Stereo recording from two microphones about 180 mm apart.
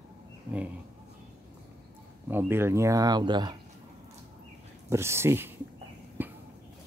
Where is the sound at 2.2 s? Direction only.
10° right (ahead or behind).